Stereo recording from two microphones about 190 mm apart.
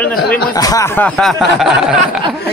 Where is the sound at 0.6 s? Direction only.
20° left (ahead or behind); by 2.2 s centre (ahead or behind).